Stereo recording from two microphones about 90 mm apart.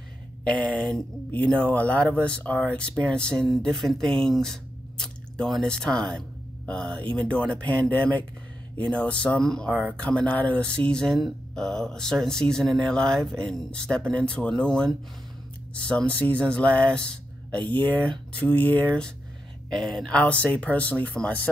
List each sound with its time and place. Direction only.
0.4 s speech: 15° left (ahead or behind)
9.7 s speech: 15° right (ahead or behind)
9.9 s speech: 15° left (ahead or behind)
19.7 s speech: 5° left (ahead or behind)